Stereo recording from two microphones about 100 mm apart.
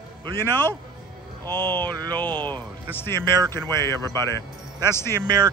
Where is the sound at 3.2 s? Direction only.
40° right (ahead or behind).